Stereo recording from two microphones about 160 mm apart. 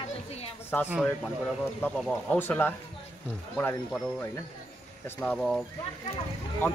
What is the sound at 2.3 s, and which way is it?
Speech, 15° left (ahead or behind).